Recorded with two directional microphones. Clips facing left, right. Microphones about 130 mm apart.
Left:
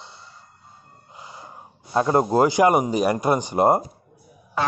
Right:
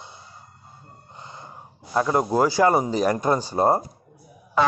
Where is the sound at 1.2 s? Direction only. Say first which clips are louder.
Left 1 dB; 10° left (ahead or behind).